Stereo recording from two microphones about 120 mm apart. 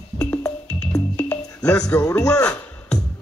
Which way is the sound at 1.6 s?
30° left (ahead or behind).